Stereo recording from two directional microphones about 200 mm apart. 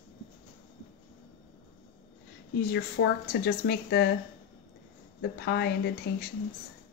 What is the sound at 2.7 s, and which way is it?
Speech, 55° left (ahead or behind).